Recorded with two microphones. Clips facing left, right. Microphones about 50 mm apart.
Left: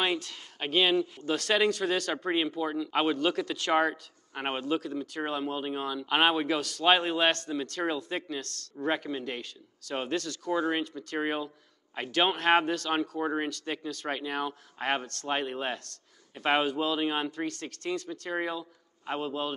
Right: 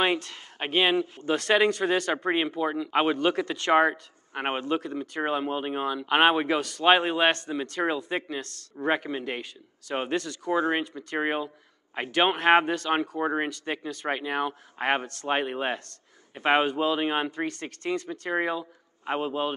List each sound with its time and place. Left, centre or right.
0.0 s speech: right